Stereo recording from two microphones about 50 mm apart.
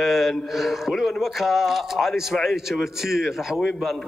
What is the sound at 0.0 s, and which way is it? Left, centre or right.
A man's voice, centre.